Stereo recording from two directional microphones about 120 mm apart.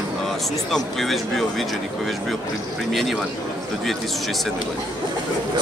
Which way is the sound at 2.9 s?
Centre (ahead or behind).